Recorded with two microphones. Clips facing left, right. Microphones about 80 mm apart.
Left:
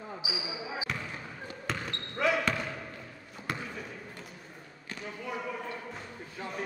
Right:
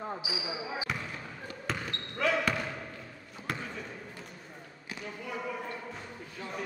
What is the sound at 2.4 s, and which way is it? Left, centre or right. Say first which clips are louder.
Basketball bounce: even; centre.